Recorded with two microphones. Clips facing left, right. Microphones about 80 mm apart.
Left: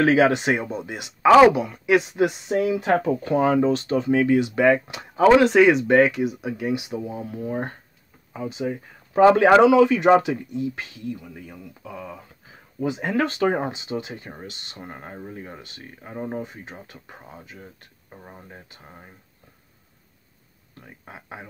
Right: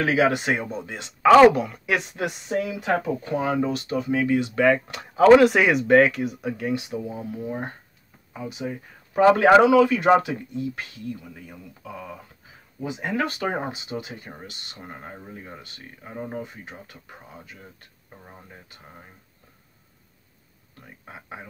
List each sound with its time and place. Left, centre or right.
0.0 s speech: left; by 1.3 s centre
1.3 s speech: centre
2.5 s speech: left
3.6 s speech: left
4.6 s speech: centre
5.3 s speech: centre
7.1 s speech: left
12.8 s speech: left
18.1 s speech: centre
21.1 s speech: left